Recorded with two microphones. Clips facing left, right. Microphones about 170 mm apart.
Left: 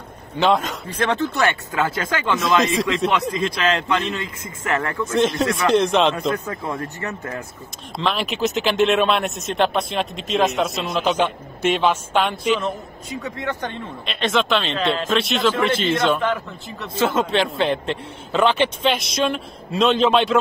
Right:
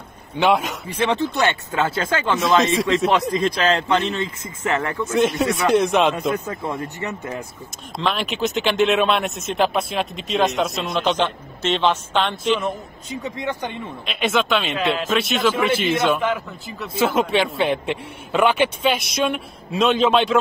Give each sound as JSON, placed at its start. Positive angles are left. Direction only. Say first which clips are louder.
{"t": 0.4, "sound": "speech", "louder": "even", "side_deg": -10}
{"t": 1.7, "sound": "a man's voice", "louder": "right 1 dB", "side_deg": -30}
{"t": 5.0, "sound": "speech", "louder": "even", "side_deg": -10}
{"t": 6.8, "sound": "speech", "louder": "right 1 dB", "side_deg": -20}
{"t": 8.0, "sound": "speech", "louder": "left 1 dB", "side_deg": 0}
{"t": 13.1, "sound": "speech", "louder": "right 1 dB", "side_deg": -15}